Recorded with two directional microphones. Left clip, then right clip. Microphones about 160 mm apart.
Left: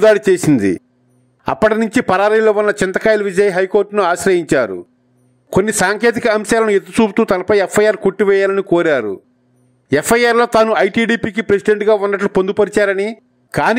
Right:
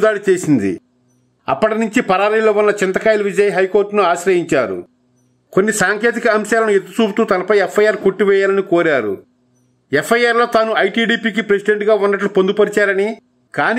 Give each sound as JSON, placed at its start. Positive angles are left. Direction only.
{"t": 0.0, "sound": "a man's voice", "side_deg": 35}